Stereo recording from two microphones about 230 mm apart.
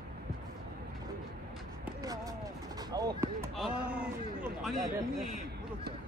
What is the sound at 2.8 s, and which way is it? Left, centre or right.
Speech, centre.